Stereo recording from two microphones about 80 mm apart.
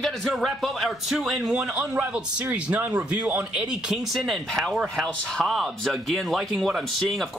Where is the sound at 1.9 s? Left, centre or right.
Right.